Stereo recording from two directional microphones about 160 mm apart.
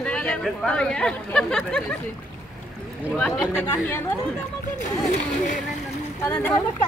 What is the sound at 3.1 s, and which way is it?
Speech, 5° left (ahead or behind).